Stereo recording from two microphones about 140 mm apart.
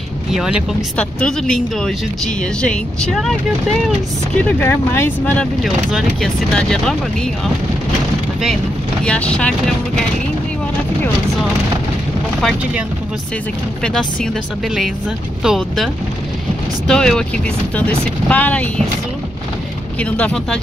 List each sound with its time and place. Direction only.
0.3 s speech: 5° right (ahead or behind)
0.9 s speech: 5° left (ahead or behind)
4.5 s speech: 15° left (ahead or behind)
5.6 s speech: centre (ahead or behind)
9.0 s speech: 10° left (ahead or behind)
15.4 s speech: centre (ahead or behind)
20.0 s speech: 10° left (ahead or behind)